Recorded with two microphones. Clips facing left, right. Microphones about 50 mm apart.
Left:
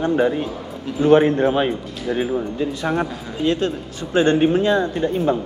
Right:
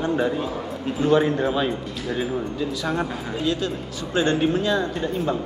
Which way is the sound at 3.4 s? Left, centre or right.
Left.